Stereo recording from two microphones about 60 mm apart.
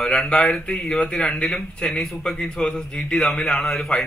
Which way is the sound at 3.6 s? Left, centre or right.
Centre.